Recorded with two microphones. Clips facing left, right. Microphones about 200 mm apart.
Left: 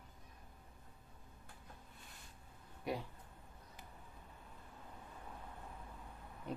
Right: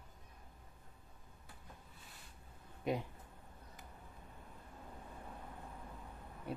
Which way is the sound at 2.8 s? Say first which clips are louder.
Right 4 dB; 20° right (ahead or behind).